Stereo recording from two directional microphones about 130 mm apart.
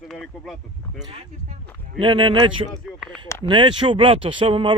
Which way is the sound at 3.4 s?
40° right (ahead or behind).